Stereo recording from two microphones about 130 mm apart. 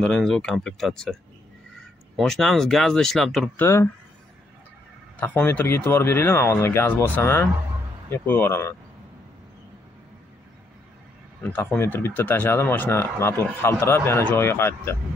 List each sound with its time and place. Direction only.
0.0 s speech: 5° left (ahead or behind)
2.1 s speech: centre (ahead or behind)
3.5 s speech: 20° left (ahead or behind)
5.2 s speech: 15° left (ahead or behind)
11.5 s speech: 15° left (ahead or behind)